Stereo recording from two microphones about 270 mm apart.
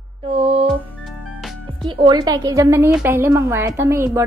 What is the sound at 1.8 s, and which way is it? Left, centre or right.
A woman's voice, centre.